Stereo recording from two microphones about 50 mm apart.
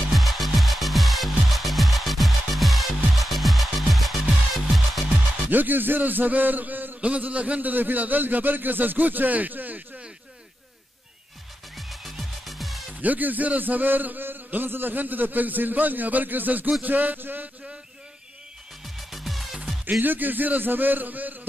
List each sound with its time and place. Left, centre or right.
0.1 s music: centre
5.5 s a man's voice: right
11.7 s music: centre
13.0 s a man's voice: right
18.9 s music: centre
20.0 s a man's voice: right